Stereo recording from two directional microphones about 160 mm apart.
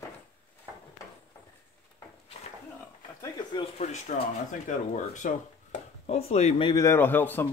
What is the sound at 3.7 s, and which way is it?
Speech, 45° left (ahead or behind).